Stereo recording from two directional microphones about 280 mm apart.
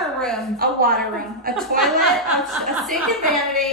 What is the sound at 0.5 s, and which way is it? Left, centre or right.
Speech, right.